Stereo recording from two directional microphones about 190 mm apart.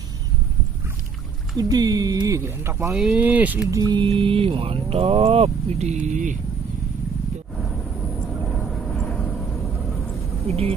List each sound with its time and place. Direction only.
1.6 s speech: 20° right (ahead or behind)
2.9 s speech: 5° right (ahead or behind)
3.8 s speech: 25° right (ahead or behind); by 6.3 s 40° right (ahead or behind)
8.6 s vehicle: 5° left (ahead or behind)